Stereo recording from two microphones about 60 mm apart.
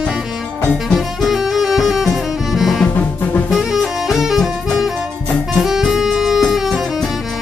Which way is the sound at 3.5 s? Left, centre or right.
Centre.